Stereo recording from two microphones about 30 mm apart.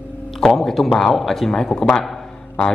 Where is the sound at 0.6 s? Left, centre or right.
Centre.